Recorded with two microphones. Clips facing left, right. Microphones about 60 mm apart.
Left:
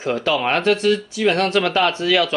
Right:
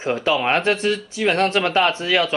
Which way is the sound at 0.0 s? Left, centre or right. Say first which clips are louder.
Even; right.